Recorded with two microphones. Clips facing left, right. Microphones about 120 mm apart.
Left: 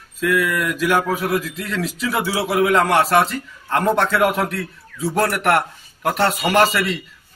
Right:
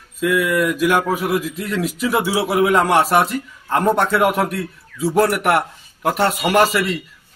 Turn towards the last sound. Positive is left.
turn(degrees=-5)  # may be behind; listen again after turning